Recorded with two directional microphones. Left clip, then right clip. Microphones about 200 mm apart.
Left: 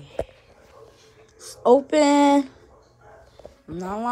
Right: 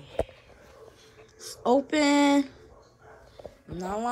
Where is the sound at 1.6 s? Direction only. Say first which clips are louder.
Left 7 dB; 5° right (ahead or behind).